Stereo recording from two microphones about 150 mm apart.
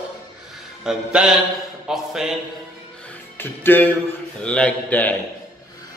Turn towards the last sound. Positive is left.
turn(degrees=10)  # may be behind; listen again after turning